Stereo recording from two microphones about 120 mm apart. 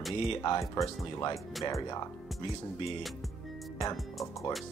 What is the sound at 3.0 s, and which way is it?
Speech, centre (ahead or behind).